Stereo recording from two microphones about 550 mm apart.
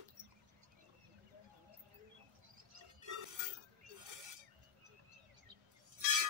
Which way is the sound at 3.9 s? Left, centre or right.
Right.